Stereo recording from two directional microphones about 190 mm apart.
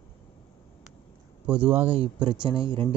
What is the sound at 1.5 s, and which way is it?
Speech, 10° right (ahead or behind).